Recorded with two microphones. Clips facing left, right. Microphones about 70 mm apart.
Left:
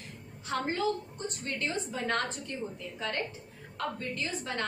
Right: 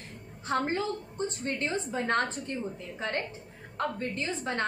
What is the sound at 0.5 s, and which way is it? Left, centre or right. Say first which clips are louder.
A woman's voice: right 1 dB; right.